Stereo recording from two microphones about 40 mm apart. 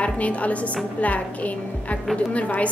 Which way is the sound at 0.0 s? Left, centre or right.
Left.